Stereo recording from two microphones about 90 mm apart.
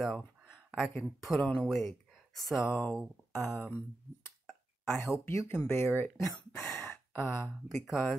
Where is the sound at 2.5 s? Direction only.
30° left (ahead or behind).